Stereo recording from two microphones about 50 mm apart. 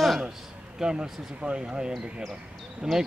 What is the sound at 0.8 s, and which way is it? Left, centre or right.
Speech, centre.